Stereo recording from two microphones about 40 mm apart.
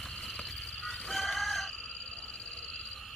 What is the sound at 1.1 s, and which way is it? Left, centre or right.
Chicken, centre.